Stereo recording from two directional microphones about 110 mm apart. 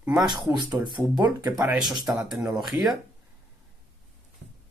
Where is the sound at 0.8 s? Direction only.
40° right (ahead or behind).